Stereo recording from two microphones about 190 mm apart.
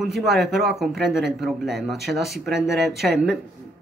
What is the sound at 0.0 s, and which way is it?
A man's voice, centre (ahead or behind).